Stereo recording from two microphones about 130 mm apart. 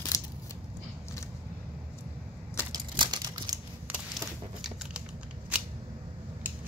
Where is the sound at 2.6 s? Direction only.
35° right (ahead or behind).